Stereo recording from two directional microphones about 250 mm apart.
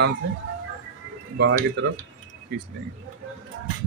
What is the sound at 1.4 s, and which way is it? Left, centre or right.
Speech, right.